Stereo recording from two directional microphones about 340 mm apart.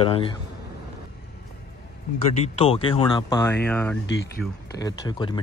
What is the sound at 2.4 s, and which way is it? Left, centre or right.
Speech, centre.